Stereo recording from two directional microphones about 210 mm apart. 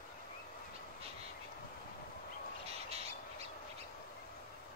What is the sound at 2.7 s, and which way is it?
Bird, 30° right (ahead or behind).